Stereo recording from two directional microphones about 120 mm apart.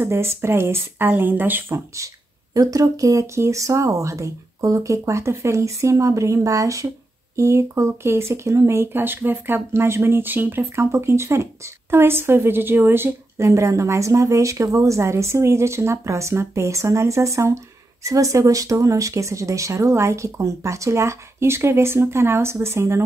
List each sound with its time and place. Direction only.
0.0 s speech: 20° right (ahead or behind)
2.5 s speech: 30° right (ahead or behind)